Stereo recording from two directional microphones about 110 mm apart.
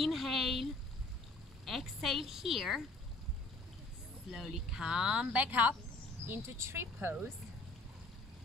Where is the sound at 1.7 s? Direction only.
Centre (ahead or behind).